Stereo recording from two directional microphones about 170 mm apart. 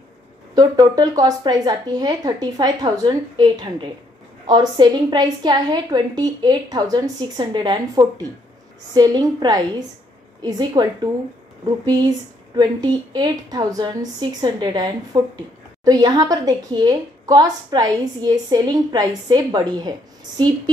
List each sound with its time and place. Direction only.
0.6 s speech: 25° right (ahead or behind)